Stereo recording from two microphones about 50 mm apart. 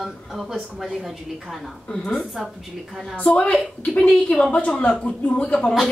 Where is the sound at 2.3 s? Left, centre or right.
Centre.